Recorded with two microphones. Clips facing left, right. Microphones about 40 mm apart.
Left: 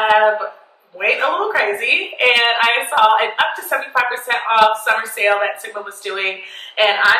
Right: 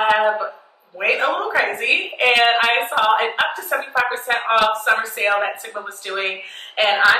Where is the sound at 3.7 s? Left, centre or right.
Left.